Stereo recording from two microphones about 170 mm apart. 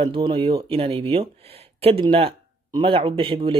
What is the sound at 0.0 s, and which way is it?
Speech, 30° right (ahead or behind).